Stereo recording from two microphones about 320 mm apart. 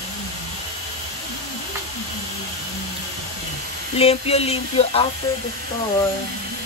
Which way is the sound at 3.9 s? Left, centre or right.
Centre.